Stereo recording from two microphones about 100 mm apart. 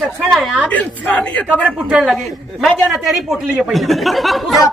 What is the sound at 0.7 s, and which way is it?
Speech, 15° left (ahead or behind).